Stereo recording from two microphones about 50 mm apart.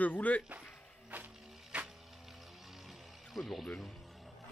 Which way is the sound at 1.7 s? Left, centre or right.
Right.